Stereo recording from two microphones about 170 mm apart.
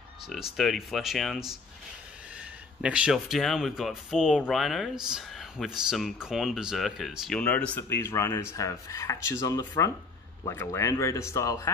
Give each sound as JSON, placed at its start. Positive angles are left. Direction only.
{"t": 0.3, "sound": "speech", "side_deg": 0}
{"t": 2.8, "sound": "speech", "side_deg": -5}